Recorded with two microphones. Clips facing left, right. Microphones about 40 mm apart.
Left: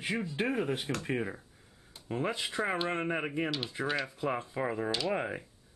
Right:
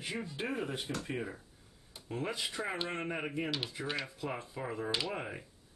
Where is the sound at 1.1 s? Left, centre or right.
Left.